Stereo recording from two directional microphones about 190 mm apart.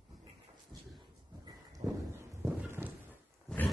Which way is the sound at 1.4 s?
15° right (ahead or behind).